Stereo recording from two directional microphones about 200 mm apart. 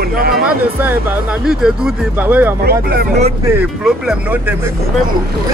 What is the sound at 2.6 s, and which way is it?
Speech, 50° right (ahead or behind).